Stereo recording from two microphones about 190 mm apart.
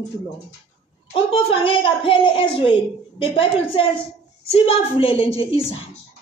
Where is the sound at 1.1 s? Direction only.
30° left (ahead or behind).